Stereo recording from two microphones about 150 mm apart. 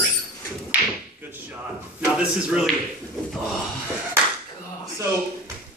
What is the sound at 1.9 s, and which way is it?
Speech, 10° right (ahead or behind).